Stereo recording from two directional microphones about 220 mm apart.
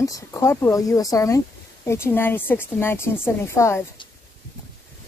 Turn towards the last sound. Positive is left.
turn(degrees=15)  # may be behind; listen again after turning